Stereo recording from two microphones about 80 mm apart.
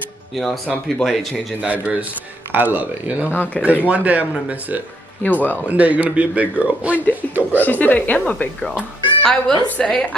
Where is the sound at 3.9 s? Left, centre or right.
Centre.